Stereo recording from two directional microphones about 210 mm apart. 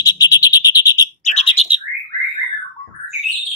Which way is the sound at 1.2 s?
35° left (ahead or behind).